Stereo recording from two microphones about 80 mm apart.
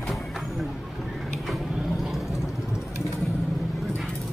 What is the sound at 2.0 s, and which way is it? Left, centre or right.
Vehicle, centre.